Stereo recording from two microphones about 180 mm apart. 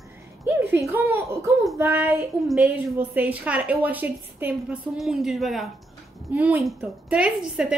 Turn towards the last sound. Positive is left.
turn(degrees=-5)  # may be behind; listen again after turning